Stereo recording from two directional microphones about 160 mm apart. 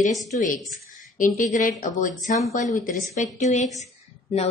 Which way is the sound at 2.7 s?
55° left (ahead or behind).